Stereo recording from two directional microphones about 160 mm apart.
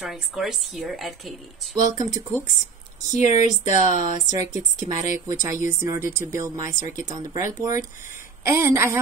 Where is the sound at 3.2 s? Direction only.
45° left (ahead or behind).